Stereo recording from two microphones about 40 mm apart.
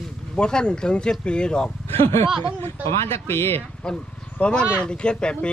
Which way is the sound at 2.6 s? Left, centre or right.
Left.